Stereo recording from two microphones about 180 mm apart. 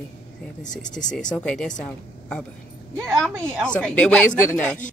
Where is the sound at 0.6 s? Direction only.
45° left (ahead or behind).